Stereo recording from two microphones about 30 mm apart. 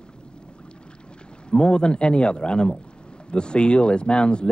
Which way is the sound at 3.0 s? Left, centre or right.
Left.